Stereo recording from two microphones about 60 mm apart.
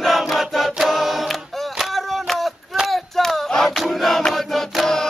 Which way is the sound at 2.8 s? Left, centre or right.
Centre.